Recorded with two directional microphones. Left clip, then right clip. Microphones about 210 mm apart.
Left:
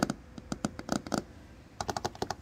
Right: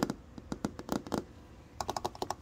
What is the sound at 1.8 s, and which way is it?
Computer keyboard, 15° right (ahead or behind).